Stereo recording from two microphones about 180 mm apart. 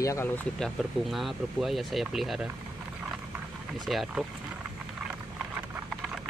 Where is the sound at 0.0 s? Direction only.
15° left (ahead or behind).